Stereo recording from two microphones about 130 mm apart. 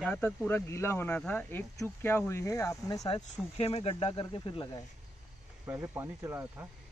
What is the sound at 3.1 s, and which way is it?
Speech, 50° left (ahead or behind).